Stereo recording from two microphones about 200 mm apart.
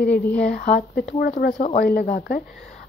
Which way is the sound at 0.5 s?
50° left (ahead or behind).